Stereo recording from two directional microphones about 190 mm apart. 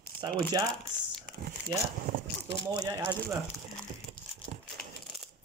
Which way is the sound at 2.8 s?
15° right (ahead or behind).